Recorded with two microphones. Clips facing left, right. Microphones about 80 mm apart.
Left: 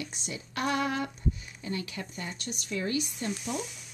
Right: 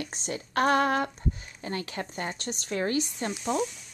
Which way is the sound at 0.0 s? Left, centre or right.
Right.